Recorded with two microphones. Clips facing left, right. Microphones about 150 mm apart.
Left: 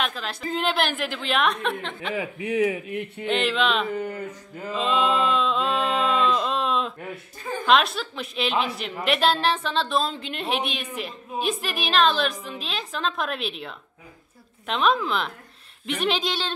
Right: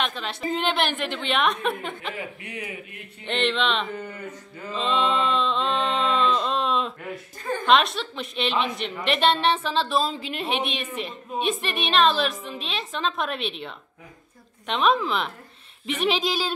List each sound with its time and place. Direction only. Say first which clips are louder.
0.0 s a woman's voice: right 1 dB; centre (ahead or behind)
3.3 s a woman's voice: left 1 dB; 5° left (ahead or behind)
4.0 s speech: left 5 dB; 45° left (ahead or behind)
4.7 s a sound: left 1 dB; 5° left (ahead or behind)
7.4 s a woman's voice: even; 5° left (ahead or behind)